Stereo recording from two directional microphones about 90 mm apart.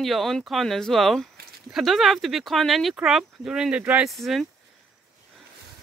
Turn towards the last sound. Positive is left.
turn(degrees=0)  # may be behind; listen again after turning